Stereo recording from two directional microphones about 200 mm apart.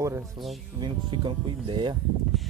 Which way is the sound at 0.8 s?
25° right (ahead or behind).